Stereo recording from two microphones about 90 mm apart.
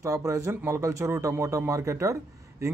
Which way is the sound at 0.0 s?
35° right (ahead or behind).